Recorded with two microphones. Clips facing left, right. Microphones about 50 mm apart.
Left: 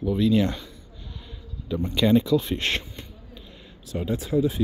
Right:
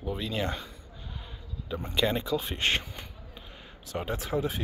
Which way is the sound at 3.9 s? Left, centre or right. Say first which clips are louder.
Left 6 dB; right.